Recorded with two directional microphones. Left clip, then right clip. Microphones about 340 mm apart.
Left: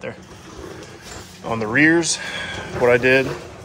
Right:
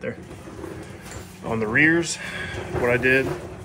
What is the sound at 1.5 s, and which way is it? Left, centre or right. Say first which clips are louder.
Speech: left 3 dB; centre.